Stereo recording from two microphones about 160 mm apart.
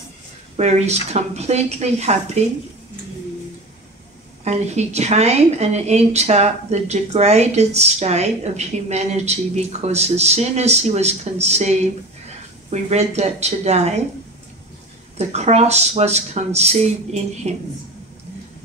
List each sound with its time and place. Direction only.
0.6 s speech: 45° right (ahead or behind)
4.5 s speech: 45° right (ahead or behind)
15.1 s speech: 45° right (ahead or behind)